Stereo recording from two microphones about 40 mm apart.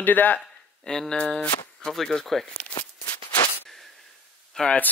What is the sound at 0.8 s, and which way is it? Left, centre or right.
Speech, centre.